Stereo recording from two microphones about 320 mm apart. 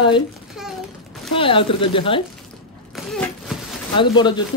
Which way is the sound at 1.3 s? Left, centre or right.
Centre.